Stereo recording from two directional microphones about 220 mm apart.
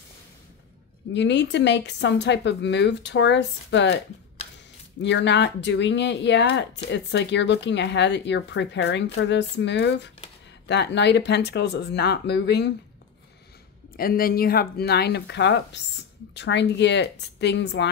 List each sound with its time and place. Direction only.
1.1 s speech: 55° left (ahead or behind)
5.0 s speech: 50° left (ahead or behind)
13.9 s speech: 40° left (ahead or behind)